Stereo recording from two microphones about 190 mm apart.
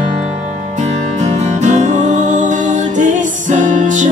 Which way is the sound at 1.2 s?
35° right (ahead or behind).